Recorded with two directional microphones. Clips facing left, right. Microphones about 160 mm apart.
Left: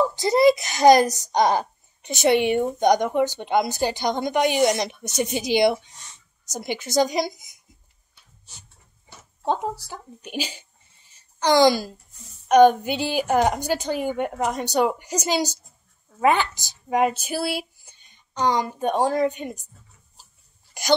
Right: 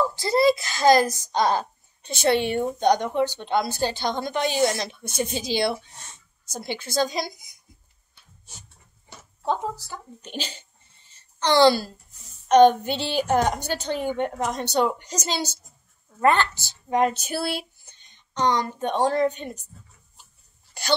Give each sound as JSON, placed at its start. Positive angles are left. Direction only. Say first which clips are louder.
{"t": 0.1, "sound": "a child's voice", "louder": "left 3 dB", "side_deg": 20}
{"t": 9.4, "sound": "a child's voice", "louder": "left 2 dB", "side_deg": 15}